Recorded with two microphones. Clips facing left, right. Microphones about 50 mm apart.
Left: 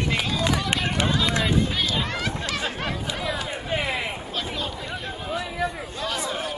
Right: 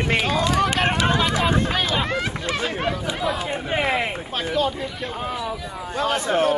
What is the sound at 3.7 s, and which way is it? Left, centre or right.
Speech, right.